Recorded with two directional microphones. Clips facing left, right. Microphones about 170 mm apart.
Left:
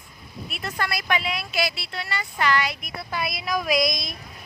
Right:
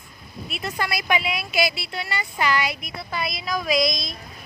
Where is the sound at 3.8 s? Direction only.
65° left (ahead or behind).